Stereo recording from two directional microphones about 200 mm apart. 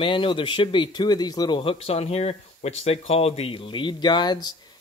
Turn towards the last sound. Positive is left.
turn(degrees=20)  # may be behind; listen again after turning